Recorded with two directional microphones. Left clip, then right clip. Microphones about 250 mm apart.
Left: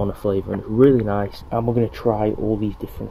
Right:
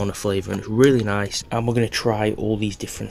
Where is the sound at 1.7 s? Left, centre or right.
Centre.